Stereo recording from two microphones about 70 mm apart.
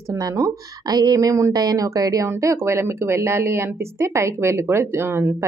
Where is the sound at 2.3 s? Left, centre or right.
Right.